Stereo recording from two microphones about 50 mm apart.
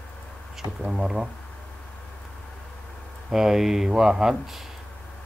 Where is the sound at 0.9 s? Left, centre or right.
Centre.